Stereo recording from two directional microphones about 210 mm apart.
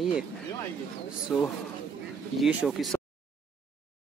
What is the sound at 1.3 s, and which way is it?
Speech, centre (ahead or behind).